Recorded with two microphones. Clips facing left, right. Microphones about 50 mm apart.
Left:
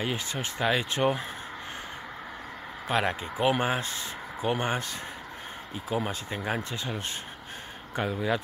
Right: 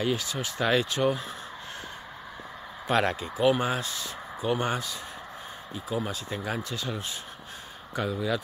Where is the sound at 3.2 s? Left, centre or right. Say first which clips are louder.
Right 2 dB; left.